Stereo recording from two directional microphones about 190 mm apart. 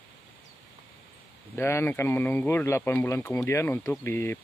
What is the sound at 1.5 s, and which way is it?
Speech, 15° left (ahead or behind).